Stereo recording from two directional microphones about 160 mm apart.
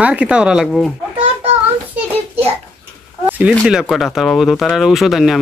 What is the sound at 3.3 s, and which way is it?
Speech, 10° right (ahead or behind).